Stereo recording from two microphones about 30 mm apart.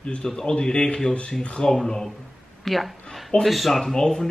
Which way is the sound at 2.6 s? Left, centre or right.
Centre.